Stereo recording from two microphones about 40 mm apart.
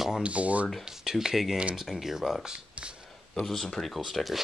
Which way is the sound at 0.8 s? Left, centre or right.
Centre.